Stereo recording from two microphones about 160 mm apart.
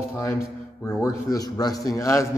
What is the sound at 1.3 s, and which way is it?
A man's voice, 25° left (ahead or behind).